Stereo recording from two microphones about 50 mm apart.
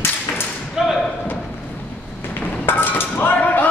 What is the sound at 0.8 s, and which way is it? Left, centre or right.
Thump, centre.